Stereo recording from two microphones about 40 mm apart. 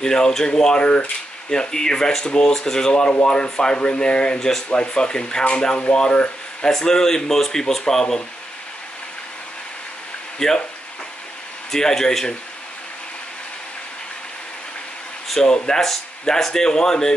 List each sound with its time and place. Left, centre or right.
0.0 s speech: centre
0.8 s speech: left
1.5 s speech: centre
4.4 s speech: centre
4.6 s speech: left
10.4 s speech: centre
11.7 s speech: centre
15.4 s speech: centre
15.8 s speech: centre